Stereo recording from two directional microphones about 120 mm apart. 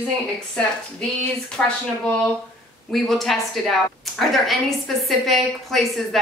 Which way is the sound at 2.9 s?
Centre (ahead or behind).